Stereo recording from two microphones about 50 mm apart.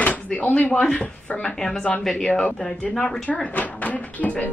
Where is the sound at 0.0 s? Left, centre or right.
Left.